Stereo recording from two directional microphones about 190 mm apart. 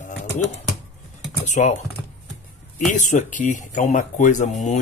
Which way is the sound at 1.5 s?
40° left (ahead or behind).